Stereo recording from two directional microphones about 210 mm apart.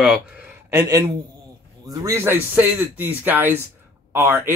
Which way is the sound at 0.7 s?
15° right (ahead or behind).